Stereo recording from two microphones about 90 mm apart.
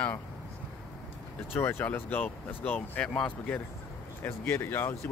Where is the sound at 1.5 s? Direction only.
25° left (ahead or behind); by 3.6 s 10° left (ahead or behind).